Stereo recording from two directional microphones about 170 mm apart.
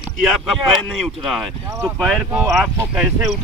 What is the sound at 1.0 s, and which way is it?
Speech, centre (ahead or behind).